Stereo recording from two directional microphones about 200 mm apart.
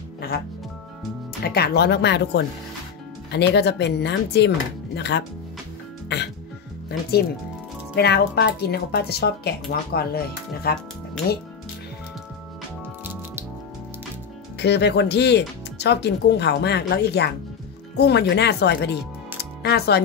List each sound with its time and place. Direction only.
1.4 s speech: 50° left (ahead or behind)
6.0 s music: 60° left (ahead or behind)
6.9 s speech: 50° left (ahead or behind)
13.0 s music: 10° right (ahead or behind)
14.6 s speech: 55° left (ahead or behind)